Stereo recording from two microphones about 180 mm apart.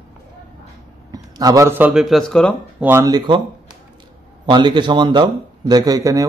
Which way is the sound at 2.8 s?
15° right (ahead or behind).